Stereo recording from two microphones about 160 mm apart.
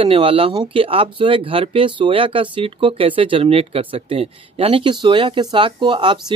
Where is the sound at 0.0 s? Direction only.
35° right (ahead or behind).